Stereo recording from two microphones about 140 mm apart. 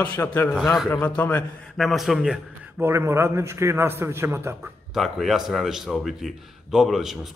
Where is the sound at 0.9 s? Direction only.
10° left (ahead or behind).